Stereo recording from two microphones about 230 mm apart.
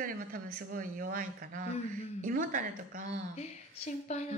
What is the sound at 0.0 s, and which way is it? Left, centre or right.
A woman's voice, right.